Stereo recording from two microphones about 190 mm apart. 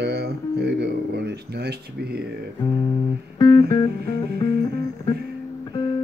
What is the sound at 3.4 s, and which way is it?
Music, 20° left (ahead or behind).